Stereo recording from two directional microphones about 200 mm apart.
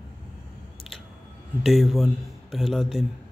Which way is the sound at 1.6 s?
Centre (ahead or behind).